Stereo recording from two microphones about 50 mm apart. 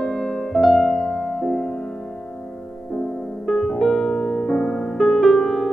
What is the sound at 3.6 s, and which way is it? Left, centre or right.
Music, centre.